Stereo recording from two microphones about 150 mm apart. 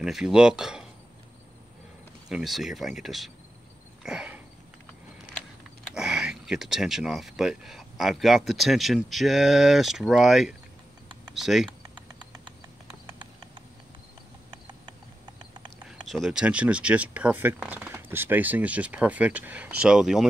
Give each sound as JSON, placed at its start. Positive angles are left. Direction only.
{"t": 0.0, "sound": "speech", "side_deg": -5}
{"t": 2.2, "sound": "speech", "side_deg": 0}
{"t": 4.0, "sound": "a sound", "side_deg": -5}
{"t": 5.9, "sound": "speech", "side_deg": -5}
{"t": 12.8, "sound": "clip-clop", "side_deg": -30}
{"t": 16.1, "sound": "speech", "side_deg": 0}